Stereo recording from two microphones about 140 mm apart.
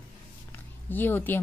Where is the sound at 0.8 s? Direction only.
15° left (ahead or behind).